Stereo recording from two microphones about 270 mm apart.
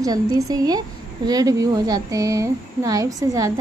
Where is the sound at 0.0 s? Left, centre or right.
Centre.